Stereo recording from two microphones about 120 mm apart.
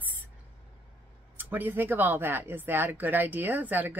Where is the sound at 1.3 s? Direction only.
15° right (ahead or behind).